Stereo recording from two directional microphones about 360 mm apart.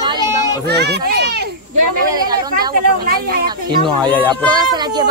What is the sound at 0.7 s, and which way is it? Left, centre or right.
Speech, right.